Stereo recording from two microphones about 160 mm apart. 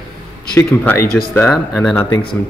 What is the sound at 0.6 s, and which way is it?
Speech, 15° left (ahead or behind).